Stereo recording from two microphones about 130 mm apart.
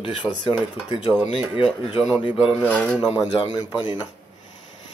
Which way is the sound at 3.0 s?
35° left (ahead or behind).